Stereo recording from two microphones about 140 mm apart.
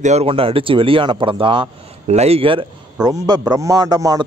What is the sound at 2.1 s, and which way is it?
Speech, 50° right (ahead or behind).